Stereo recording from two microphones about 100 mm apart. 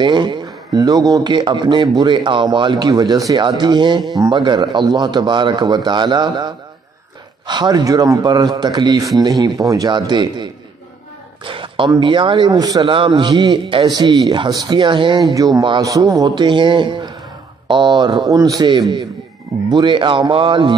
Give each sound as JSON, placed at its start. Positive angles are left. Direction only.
{"t": 0.0, "sound": "speech", "side_deg": -50}
{"t": 9.4, "sound": "speech", "side_deg": -35}
{"t": 11.4, "sound": "a sound", "side_deg": -60}
{"t": 12.0, "sound": "speech", "side_deg": -55}
{"t": 12.8, "sound": "a man's voice", "side_deg": -65}
{"t": 15.3, "sound": "a man's voice", "side_deg": -35}
{"t": 16.3, "sound": "speech", "side_deg": -50}
{"t": 18.3, "sound": "speech", "side_deg": -35}